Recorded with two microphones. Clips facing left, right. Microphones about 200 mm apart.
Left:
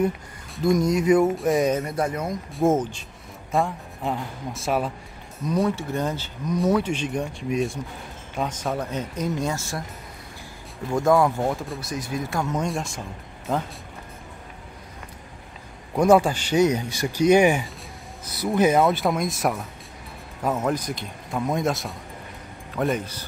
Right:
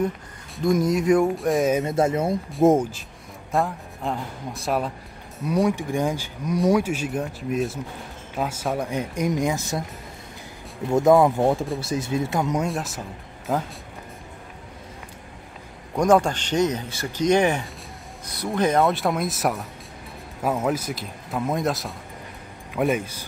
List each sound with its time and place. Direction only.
0.6 s speech: centre (ahead or behind)
1.8 s speech: 25° right (ahead or behind)
2.6 s speech: 15° right (ahead or behind)
3.5 s speech: centre (ahead or behind)
5.7 s speech: 15° right (ahead or behind)
10.9 s speech: 20° right (ahead or behind)
12.5 s speech: centre (ahead or behind)
15.9 s speech: 5° left (ahead or behind); by 23.2 s 10° right (ahead or behind)